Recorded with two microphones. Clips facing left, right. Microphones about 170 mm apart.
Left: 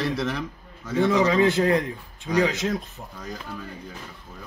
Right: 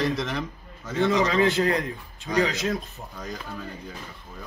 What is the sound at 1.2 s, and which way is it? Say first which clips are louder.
Speech: left 2 dB; 15° left (ahead or behind).